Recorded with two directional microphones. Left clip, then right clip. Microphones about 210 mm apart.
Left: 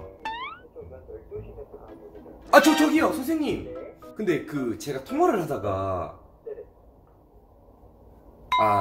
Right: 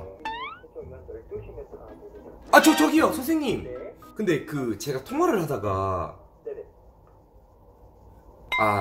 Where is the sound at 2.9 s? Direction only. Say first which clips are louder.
Right 1 dB; 20° right (ahead or behind).